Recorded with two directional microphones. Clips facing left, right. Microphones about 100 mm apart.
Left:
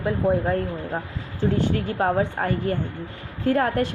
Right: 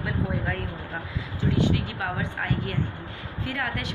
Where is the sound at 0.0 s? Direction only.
35° left (ahead or behind).